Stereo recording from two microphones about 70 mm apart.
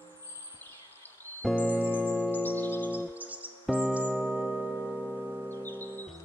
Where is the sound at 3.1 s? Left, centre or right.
Right.